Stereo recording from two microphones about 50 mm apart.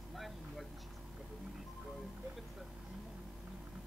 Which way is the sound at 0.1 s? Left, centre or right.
Centre.